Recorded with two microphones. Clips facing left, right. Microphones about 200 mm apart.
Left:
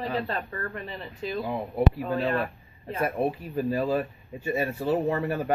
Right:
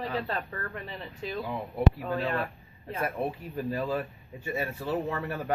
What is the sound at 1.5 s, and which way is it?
Speech, 20° left (ahead or behind).